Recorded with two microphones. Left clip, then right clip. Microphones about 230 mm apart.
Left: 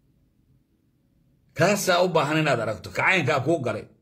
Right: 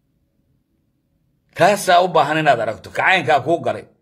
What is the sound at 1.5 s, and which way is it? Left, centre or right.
A man's voice, centre.